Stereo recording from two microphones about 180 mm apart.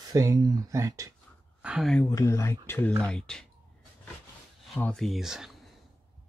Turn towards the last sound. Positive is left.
turn(degrees=0)  # may be behind; listen again after turning